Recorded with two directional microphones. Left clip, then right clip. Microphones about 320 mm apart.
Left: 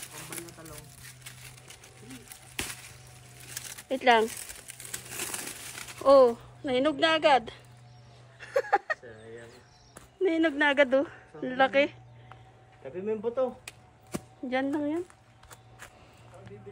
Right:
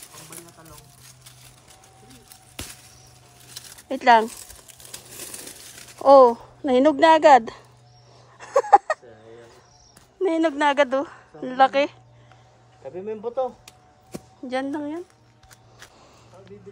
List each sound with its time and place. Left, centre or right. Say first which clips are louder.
3.9 s speech: right 6 dB; centre
5.1 s crumpling: left 4 dB; centre
6.0 s speech: right 7 dB; centre
8.4 s a sound: right 11 dB; centre
10.2 s speech: right 5 dB; centre
12.9 s speech: right 2 dB; centre
14.5 s speech: right 2 dB; centre